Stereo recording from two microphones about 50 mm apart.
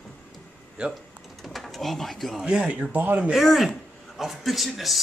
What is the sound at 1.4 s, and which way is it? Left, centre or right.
Speech, centre.